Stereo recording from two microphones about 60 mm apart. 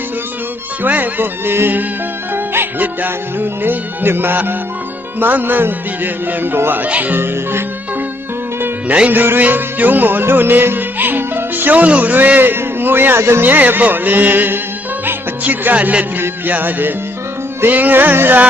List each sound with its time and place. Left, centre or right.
0.8 s music: right
6.9 s speech: right
7.2 s music: right
8.8 s music: right
9.2 s music: right
13.5 s music: right
16.2 s a man's voice: right
17.6 s music: right